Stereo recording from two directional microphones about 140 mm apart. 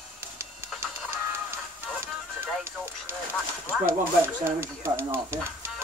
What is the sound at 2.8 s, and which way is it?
Speech, 15° right (ahead or behind).